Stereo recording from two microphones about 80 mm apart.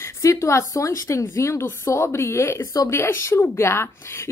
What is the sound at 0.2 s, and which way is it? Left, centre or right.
Speech, left.